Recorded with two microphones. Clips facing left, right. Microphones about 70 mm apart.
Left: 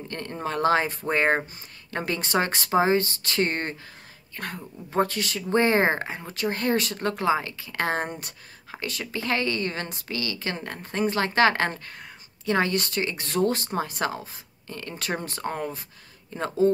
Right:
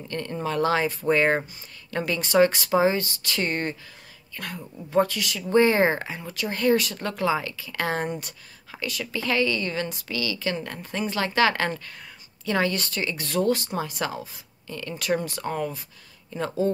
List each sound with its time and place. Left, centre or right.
0.1 s speech: left